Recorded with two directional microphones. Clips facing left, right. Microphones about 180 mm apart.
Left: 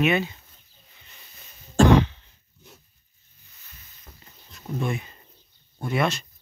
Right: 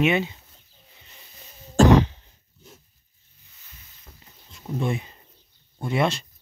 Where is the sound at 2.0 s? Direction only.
35° right (ahead or behind).